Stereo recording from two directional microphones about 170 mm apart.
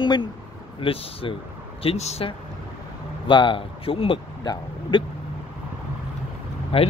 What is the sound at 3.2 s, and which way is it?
Speech, 30° left (ahead or behind).